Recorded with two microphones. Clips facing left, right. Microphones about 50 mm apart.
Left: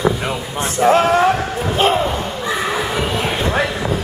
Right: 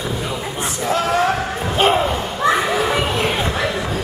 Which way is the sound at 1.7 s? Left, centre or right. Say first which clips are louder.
Even; centre.